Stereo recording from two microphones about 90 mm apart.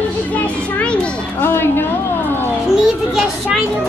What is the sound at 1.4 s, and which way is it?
Music, 25° left (ahead or behind).